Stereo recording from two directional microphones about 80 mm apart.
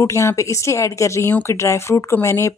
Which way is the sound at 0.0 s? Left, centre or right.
Left.